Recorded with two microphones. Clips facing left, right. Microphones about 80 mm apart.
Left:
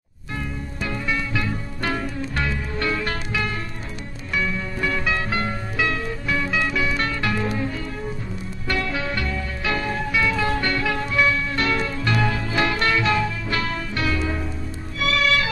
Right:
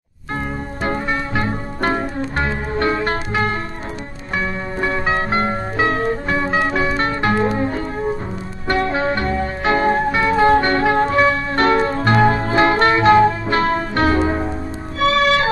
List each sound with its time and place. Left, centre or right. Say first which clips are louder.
0.8 s music: right 5 dB; right